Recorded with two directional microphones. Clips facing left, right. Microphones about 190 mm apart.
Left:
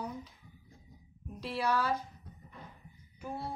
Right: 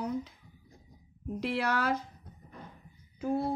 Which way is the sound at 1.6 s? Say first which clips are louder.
Left 2 dB; 90° right.